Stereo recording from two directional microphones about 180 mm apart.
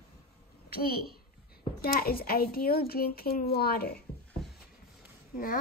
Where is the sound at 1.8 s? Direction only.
55° left (ahead or behind).